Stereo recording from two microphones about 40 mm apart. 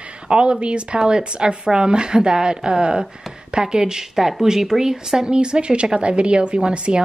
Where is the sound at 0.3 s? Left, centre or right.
Right.